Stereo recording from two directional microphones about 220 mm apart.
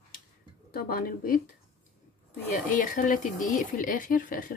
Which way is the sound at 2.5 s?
35° left (ahead or behind).